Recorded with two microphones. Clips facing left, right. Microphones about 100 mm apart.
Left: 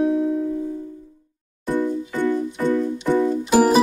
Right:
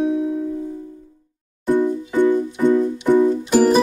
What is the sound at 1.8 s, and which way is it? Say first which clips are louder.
Music: right 4 dB; 15° right (ahead or behind).